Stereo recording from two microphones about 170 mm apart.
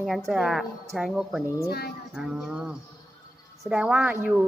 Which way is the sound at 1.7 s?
65° left (ahead or behind).